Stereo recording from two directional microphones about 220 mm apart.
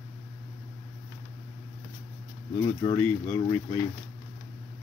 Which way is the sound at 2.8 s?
15° left (ahead or behind).